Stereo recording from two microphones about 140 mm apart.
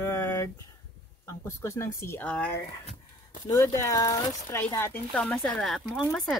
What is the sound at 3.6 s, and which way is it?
Speech, 25° left (ahead or behind).